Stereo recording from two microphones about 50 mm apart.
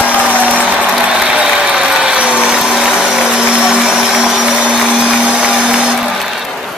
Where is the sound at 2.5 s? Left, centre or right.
Centre.